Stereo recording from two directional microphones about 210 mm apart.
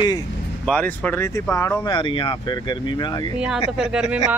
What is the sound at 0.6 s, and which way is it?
Speech, 5° left (ahead or behind).